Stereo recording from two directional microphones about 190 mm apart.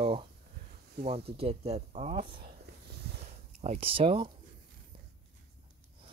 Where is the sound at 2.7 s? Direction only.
55° right (ahead or behind).